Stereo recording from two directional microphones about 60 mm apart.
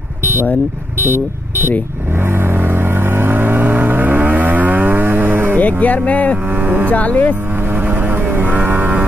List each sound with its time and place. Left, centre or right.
0.2 s vehicle: right
1.0 s speech: right
2.4 s vehicle: right
5.6 s speech: left
6.6 s cattle: right
6.9 s speech: left
8.3 s a sound: right